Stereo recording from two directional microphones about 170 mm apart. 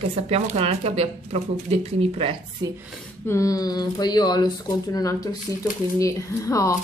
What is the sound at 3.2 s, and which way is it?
Speech, 20° left (ahead or behind).